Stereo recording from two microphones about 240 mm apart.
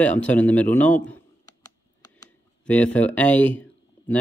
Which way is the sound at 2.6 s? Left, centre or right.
Centre.